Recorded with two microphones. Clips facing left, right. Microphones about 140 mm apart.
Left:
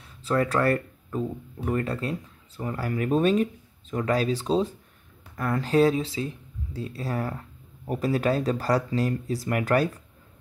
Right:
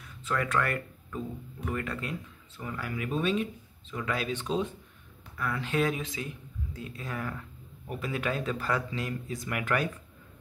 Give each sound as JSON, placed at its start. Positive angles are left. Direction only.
{"t": 0.0, "sound": "speech", "side_deg": 35}
{"t": 5.3, "sound": "speech", "side_deg": 45}